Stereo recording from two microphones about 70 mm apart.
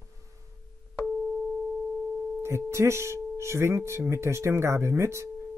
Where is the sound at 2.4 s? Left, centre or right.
Right.